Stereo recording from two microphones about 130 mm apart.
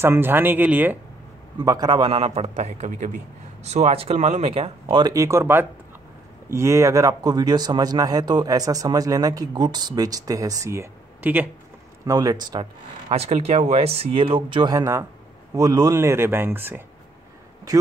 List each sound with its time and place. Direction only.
0.0 s speech: 20° right (ahead or behind)
1.6 s speech: 30° right (ahead or behind); by 5.0 s 45° right (ahead or behind)
5.0 s speech: 25° right (ahead or behind)
12.1 s speech: 30° right (ahead or behind)
13.1 s speech: 50° right (ahead or behind); by 16.8 s 15° right (ahead or behind)